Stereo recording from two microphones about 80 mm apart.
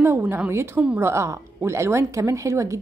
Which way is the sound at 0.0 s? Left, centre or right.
Right.